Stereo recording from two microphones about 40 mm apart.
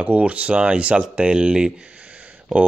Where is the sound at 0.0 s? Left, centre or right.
Right.